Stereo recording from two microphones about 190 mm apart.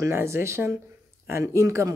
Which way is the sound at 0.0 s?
15° right (ahead or behind).